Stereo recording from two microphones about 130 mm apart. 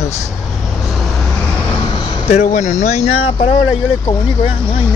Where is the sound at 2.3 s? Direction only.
70° left (ahead or behind).